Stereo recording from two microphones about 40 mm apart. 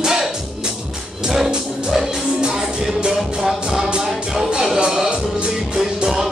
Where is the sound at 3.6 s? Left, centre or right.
Right.